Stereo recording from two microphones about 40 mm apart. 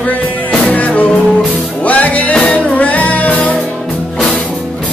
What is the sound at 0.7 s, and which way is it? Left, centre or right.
Music, left.